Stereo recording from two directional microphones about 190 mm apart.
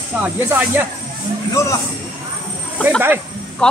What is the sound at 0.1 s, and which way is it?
Speech, 10° right (ahead or behind).